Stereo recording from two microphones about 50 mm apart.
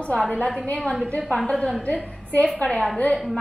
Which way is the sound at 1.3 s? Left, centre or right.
Centre.